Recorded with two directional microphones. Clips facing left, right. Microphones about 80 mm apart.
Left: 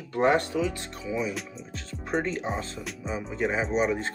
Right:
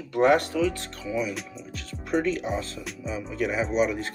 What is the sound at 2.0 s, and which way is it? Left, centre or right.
Speech, left.